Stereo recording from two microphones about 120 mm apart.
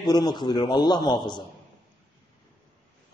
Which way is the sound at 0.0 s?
35° left (ahead or behind).